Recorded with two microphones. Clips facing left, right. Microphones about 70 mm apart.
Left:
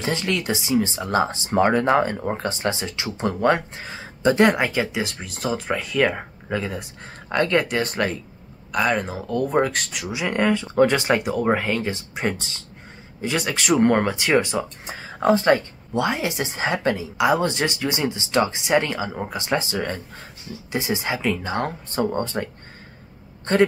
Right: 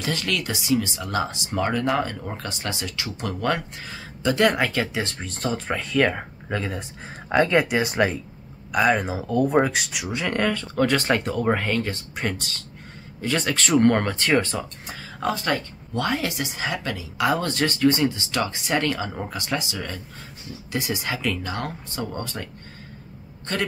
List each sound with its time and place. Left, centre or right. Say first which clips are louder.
0.0 s speech: left 3 dB; left; by 6.9 s centre
7.2 s speech: right 1 dB; centre
10.1 s speech: left 3 dB; centre
13.2 s speech: even; centre
14.9 s speech: left 8 dB; left
17.2 s a man's voice: left 2 dB; centre; by 23.6 s left